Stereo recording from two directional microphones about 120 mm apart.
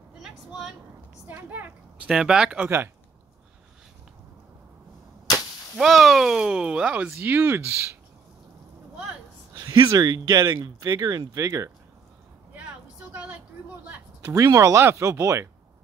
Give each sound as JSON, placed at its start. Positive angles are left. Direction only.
{"t": 0.2, "sound": "vehicle", "side_deg": -5}
{"t": 1.2, "sound": "speech", "side_deg": -15}
{"t": 5.8, "sound": "speech", "side_deg": 0}
{"t": 9.6, "sound": "speech", "side_deg": -35}
{"t": 13.1, "sound": "vehicle", "side_deg": -10}
{"t": 14.3, "sound": "speech", "side_deg": -30}